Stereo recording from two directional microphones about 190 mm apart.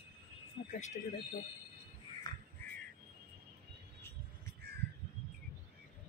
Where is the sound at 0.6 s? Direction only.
60° left (ahead or behind).